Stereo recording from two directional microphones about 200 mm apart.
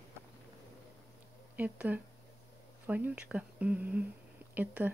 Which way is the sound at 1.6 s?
5° right (ahead or behind).